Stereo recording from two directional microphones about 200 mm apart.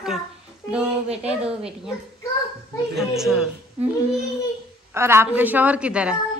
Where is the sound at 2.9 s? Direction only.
Centre (ahead or behind).